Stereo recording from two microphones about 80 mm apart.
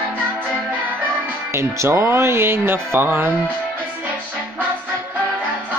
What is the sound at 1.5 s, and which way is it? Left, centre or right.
Speech, right.